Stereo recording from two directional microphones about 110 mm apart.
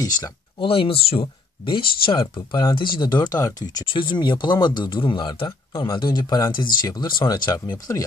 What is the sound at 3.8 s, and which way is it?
Speech, 50° left (ahead or behind).